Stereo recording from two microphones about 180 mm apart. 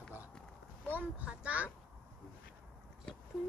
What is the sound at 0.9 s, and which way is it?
Speech, 10° right (ahead or behind).